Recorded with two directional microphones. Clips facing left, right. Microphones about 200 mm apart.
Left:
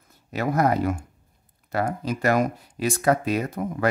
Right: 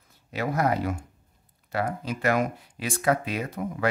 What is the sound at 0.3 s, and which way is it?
Speech, 45° left (ahead or behind).